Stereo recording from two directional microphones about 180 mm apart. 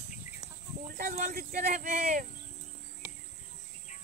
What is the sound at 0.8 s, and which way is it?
Speech, 50° right (ahead or behind).